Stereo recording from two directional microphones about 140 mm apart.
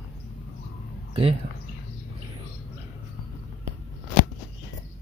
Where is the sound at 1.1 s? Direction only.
40° right (ahead or behind).